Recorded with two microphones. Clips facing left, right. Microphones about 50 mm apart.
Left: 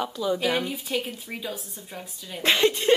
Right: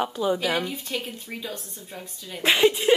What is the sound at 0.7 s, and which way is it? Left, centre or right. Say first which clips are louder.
Speech: left 2 dB; centre.